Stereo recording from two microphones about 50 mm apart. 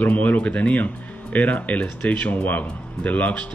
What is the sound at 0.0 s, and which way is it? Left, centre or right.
Speech, left.